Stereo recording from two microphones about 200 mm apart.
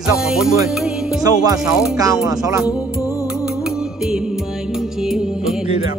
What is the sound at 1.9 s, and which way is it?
Speech, 15° right (ahead or behind).